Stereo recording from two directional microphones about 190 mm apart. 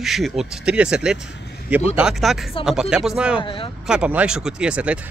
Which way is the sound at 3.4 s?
25° left (ahead or behind).